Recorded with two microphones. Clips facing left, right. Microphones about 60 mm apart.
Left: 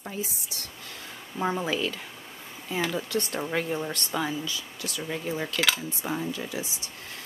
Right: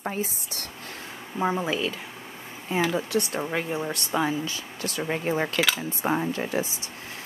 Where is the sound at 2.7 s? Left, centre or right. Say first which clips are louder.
Right 4 dB; right.